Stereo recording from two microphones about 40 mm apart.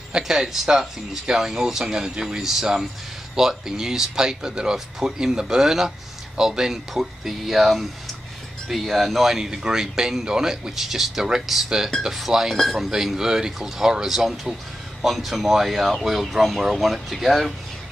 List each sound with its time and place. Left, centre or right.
0.3 s speech: centre
7.2 s speech: centre
9.4 s speech: centre
12.9 s speech: centre